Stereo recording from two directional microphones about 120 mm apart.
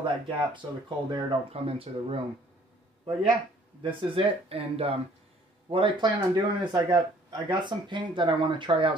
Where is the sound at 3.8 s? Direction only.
50° right (ahead or behind).